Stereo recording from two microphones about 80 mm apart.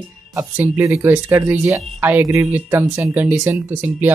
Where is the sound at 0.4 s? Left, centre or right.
Right.